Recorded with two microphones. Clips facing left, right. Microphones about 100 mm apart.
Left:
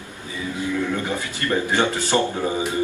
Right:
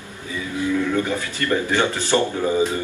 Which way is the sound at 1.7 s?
20° left (ahead or behind).